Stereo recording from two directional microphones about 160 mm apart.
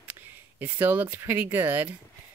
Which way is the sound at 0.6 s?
10° right (ahead or behind).